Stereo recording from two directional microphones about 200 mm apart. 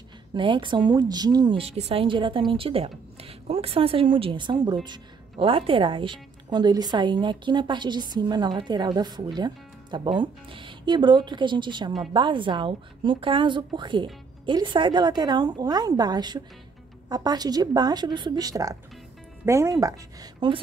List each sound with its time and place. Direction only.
0.3 s a woman's voice: 25° right (ahead or behind)